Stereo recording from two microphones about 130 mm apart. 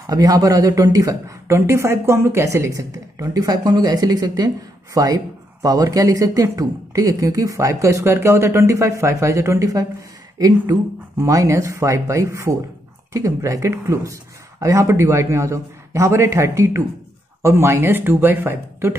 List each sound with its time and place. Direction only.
0.0 s speech: 30° right (ahead or behind)